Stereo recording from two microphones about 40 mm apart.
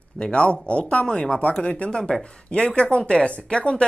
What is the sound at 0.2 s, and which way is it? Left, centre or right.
Speech, left.